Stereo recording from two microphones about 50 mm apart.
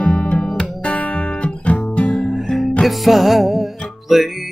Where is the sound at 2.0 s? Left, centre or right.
Centre.